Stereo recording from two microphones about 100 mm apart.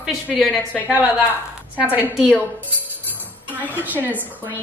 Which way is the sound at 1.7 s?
15° right (ahead or behind).